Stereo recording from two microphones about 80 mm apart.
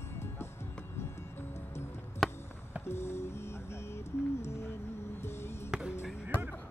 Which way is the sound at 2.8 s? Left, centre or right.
Left.